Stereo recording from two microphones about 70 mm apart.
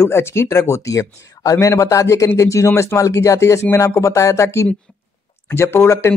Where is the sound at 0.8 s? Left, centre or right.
Left.